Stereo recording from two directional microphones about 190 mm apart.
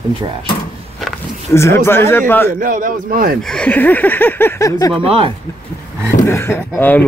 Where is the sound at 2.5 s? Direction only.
45° right (ahead or behind).